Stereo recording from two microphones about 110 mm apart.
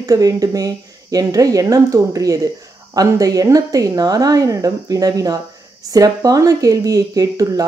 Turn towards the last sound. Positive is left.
turn(degrees=-35)  # may be behind; listen again after turning